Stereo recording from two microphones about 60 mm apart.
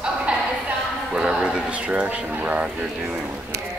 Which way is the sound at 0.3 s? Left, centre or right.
Centre.